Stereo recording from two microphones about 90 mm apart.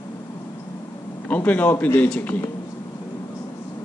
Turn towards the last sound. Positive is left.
turn(degrees=15)  # may be behind; listen again after turning